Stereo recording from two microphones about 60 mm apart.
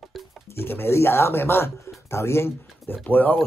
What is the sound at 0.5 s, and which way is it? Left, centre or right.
Speech, left.